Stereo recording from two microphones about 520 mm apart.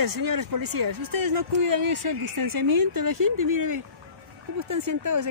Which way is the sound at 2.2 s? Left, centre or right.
Right.